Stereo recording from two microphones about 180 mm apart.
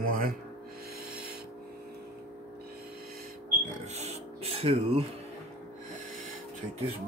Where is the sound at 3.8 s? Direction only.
40° right (ahead or behind).